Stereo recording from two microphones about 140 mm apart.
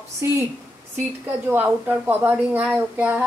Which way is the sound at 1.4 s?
15° right (ahead or behind).